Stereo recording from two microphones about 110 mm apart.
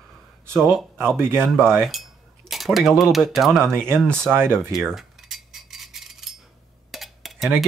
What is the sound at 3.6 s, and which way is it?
Speech, 20° right (ahead or behind).